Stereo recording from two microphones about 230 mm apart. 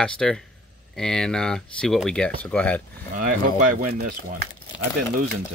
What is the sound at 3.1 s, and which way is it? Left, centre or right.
Speech, right.